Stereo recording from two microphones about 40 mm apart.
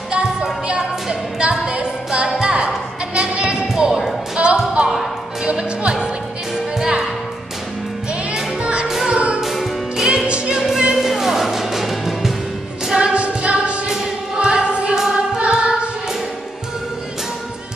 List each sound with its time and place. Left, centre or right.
0.1 s a sound: right
2.0 s music: centre
3.2 s a sound: right
4.4 s music: right
8.8 s music: centre
9.1 s music: right
9.4 s music: centre
10.0 s music: right
10.5 s music: centre
12.8 s singing: right
13.8 s choir: centre